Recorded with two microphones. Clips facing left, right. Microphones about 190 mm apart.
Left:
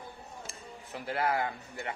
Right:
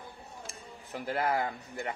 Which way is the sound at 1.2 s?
35° right (ahead or behind).